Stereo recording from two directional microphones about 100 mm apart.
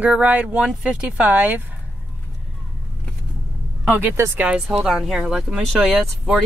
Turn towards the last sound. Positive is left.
turn(degrees=-5)  # may be behind; listen again after turning